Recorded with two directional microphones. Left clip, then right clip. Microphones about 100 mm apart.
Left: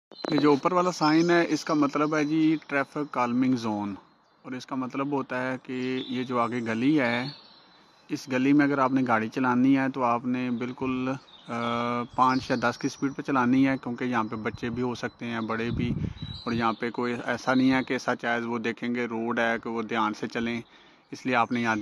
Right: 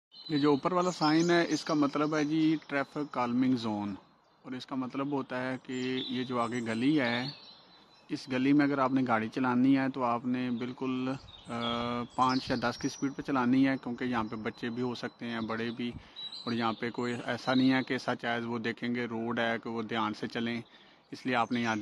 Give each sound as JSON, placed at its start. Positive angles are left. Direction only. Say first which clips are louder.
{"t": 0.3, "sound": "speech", "louder": "left 5 dB", "side_deg": 35}